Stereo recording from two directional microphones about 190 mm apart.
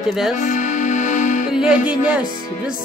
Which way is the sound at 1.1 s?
40° left (ahead or behind).